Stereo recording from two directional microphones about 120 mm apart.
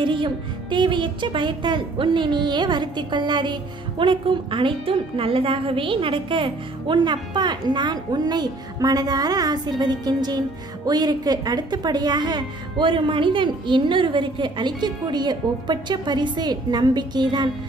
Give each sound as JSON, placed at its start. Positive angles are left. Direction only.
{"t": 0.0, "sound": "a woman's voice", "side_deg": -45}